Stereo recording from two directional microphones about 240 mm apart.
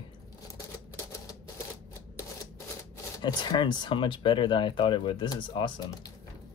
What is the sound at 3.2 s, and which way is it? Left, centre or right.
Speech, centre.